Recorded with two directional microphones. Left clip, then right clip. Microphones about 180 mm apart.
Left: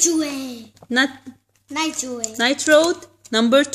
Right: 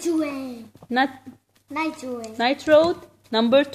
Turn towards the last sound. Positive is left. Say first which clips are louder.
# left 2 dB
turn(degrees=45)  # may be behind; listen again after turning